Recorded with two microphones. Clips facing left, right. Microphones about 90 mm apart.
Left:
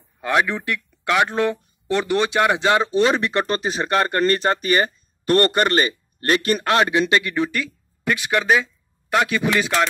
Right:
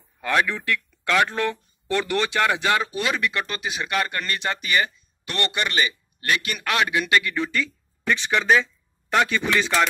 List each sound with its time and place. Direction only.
0.2 s a man's voice: 20° left (ahead or behind)